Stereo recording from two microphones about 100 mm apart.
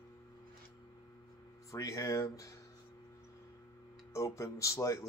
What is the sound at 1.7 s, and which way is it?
Speech, 35° left (ahead or behind).